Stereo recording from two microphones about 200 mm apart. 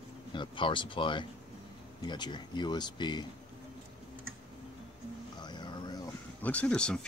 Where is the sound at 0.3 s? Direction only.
25° left (ahead or behind).